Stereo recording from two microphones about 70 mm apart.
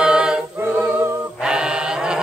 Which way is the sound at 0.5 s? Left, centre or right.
Right.